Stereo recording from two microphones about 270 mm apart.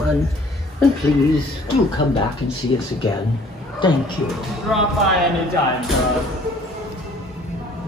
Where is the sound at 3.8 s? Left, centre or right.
Centre.